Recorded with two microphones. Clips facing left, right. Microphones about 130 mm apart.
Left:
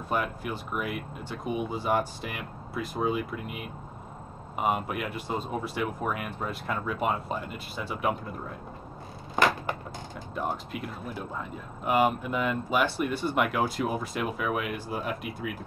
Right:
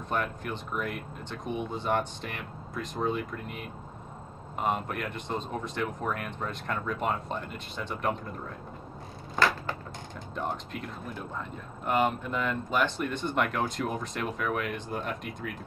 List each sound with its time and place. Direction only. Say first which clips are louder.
0.1 s speech: left 2 dB; 5° left (ahead or behind)
9.3 s a sound: left 2 dB; 15° left (ahead or behind)
10.3 s speech: left 2 dB; 5° left (ahead or behind)